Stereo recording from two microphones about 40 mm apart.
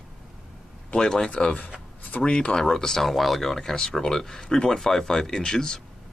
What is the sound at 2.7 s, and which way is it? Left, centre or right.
Speech, centre.